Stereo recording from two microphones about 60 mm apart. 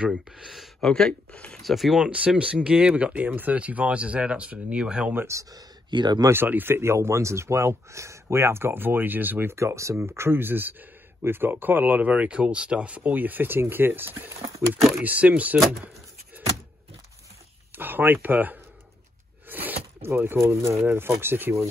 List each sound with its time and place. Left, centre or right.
0.1 s speech: centre
0.8 s speech: centre
1.6 s speech: centre
2.0 s speech: centre
5.3 s speech: right
6.3 s speech: right
9.6 s speech: right
9.9 s speech: right
17.7 s speech: right
19.5 s zipper: right
20.3 s speech: right
20.8 s speech: right